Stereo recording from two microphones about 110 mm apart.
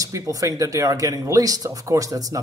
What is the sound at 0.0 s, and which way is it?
A man's voice, 30° right (ahead or behind).